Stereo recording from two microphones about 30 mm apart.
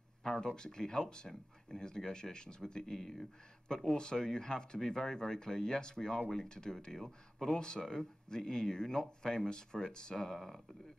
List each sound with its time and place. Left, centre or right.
0.2 s speech: left
2.8 s speech: centre
3.6 s speech: left